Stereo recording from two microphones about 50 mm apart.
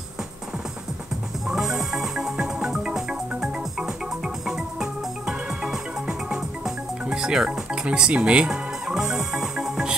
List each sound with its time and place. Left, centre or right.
1.5 s music: centre
8.8 s music: centre